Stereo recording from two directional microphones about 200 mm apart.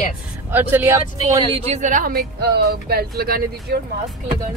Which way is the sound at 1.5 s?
35° right (ahead or behind).